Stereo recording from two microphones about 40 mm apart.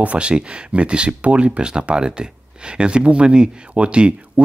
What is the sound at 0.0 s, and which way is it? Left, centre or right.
Speech, right.